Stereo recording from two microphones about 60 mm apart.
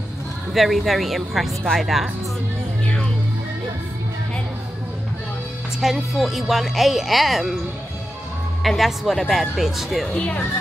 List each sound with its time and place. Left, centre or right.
0.5 s speech: centre
5.8 s speech: centre
8.6 s speech: centre
10.1 s speech: left